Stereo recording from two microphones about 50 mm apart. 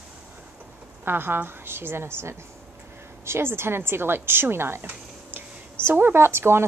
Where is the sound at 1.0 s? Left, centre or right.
Right.